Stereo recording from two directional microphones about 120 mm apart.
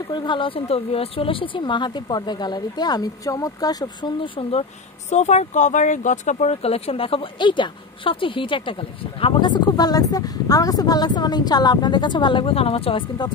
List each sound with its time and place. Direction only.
0.1 s speech: 40° left (ahead or behind)
5.1 s speech: 70° left (ahead or behind); by 13.0 s 50° left (ahead or behind)